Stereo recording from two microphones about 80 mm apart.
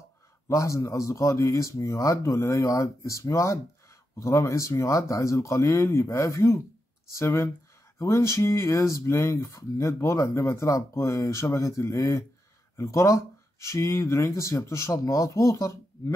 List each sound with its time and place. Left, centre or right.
0.5 s speech: left